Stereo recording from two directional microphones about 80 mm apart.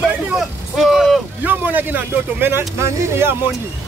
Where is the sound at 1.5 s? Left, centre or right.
Right.